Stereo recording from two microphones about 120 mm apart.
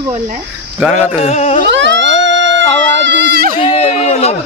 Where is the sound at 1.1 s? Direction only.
60° left (ahead or behind).